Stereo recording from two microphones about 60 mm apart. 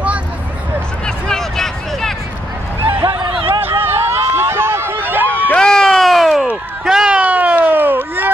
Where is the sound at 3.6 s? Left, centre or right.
Right.